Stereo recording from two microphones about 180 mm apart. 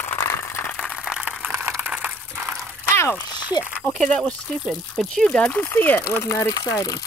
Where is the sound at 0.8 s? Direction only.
Centre (ahead or behind).